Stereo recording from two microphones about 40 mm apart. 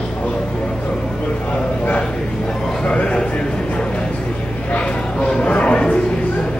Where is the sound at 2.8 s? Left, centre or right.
Left.